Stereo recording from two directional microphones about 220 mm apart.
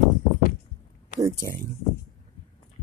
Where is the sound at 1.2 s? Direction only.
15° right (ahead or behind).